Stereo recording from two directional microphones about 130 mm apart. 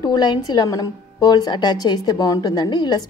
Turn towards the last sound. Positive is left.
turn(degrees=30)  # may be behind; listen again after turning